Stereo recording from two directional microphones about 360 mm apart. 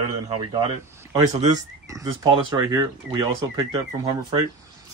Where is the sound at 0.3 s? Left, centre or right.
Centre.